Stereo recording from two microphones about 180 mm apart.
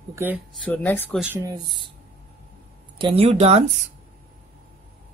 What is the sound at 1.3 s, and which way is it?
Speech, 20° right (ahead or behind).